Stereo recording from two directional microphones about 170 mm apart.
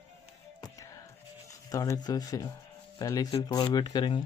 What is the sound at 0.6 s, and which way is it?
Music, 20° left (ahead or behind).